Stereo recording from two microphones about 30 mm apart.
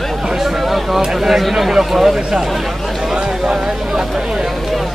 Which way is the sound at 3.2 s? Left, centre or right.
Right.